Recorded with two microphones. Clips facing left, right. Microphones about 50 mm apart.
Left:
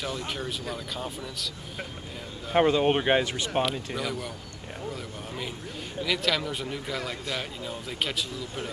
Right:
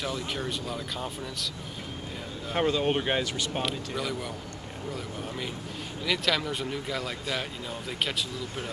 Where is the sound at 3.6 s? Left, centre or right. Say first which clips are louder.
Left 1 dB; centre.